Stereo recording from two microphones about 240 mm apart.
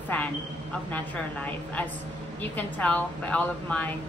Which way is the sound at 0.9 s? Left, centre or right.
Centre.